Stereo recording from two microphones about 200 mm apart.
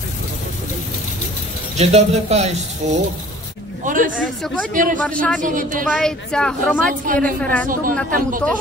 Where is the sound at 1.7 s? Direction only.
35° right (ahead or behind).